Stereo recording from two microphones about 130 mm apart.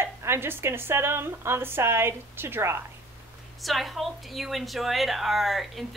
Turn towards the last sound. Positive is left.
turn(degrees=0)  # may be behind; listen again after turning